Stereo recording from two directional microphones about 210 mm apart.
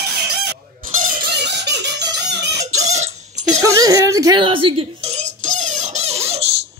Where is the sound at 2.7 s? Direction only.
35° right (ahead or behind).